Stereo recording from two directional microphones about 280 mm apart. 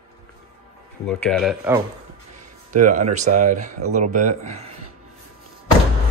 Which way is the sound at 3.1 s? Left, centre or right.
Right.